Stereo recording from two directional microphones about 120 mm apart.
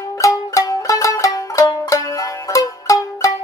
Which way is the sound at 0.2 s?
25° left (ahead or behind).